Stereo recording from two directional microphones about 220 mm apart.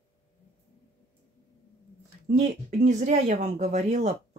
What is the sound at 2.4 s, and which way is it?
Speech, 35° right (ahead or behind).